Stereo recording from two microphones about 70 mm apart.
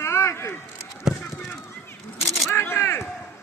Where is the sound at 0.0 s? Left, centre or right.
Left.